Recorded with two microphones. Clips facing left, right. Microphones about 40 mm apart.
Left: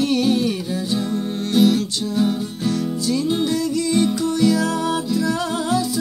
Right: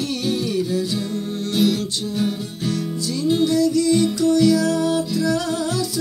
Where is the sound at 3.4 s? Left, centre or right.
Left.